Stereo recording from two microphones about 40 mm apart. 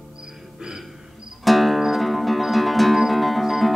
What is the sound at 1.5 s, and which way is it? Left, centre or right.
Music, centre.